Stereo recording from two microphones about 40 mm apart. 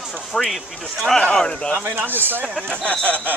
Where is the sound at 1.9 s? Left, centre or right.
Right.